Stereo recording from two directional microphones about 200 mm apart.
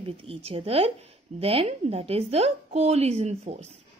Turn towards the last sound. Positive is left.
turn(degrees=-35)  # may be behind; listen again after turning